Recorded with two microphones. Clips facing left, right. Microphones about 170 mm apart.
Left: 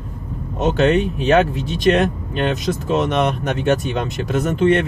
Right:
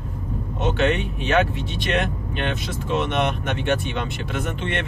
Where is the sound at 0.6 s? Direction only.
40° left (ahead or behind).